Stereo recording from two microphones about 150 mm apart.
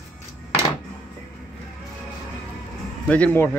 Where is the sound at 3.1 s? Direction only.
10° left (ahead or behind).